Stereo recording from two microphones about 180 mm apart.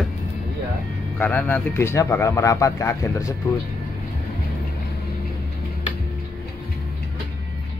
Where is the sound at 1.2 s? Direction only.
10° left (ahead or behind).